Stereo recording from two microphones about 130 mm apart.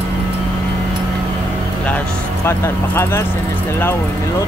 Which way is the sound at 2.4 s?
20° left (ahead or behind).